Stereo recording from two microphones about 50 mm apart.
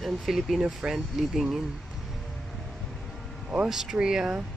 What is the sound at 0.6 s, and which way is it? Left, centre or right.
Speech, centre.